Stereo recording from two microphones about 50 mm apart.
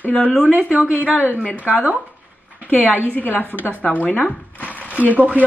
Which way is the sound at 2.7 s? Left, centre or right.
Left.